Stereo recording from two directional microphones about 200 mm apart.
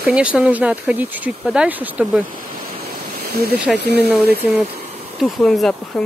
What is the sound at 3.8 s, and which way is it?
Speech, 55° right (ahead or behind).